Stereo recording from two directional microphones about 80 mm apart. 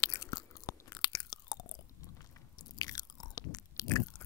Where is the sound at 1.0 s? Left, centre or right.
Left.